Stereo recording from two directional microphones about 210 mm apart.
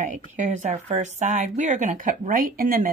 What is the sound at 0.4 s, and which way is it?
Speech, 35° right (ahead or behind).